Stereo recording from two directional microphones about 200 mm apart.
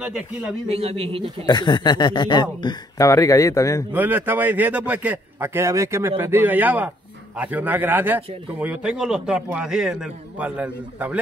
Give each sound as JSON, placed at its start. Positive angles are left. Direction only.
{"t": 0.7, "sound": "a man's voice", "side_deg": -30}
{"t": 1.4, "sound": "speech", "side_deg": 20}
{"t": 3.9, "sound": "a man's voice", "side_deg": -10}